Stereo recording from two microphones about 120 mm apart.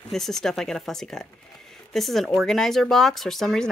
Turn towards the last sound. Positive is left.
turn(degrees=5)  # may be behind; listen again after turning